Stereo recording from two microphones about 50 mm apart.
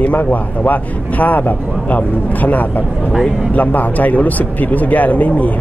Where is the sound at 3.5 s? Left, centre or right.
Left.